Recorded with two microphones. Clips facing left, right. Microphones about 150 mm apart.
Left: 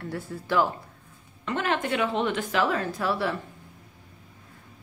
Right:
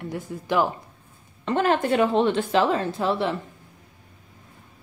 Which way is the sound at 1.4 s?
35° right (ahead or behind).